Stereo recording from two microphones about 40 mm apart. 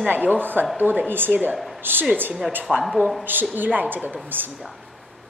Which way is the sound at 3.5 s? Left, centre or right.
Right.